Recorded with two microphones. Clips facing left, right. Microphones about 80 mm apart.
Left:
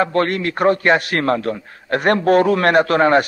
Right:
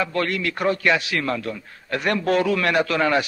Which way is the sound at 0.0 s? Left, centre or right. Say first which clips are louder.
Left 6 dB; left.